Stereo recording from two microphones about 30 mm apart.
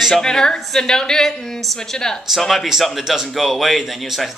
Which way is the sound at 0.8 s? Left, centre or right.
Left.